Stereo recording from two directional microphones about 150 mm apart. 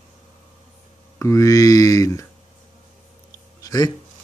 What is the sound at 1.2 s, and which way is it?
Speech, 20° left (ahead or behind).